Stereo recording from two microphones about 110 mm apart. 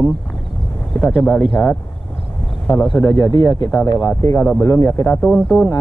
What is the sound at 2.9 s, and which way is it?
Speech, 30° left (ahead or behind).